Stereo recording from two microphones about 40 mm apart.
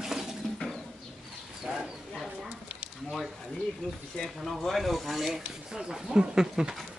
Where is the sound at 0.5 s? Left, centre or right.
Centre.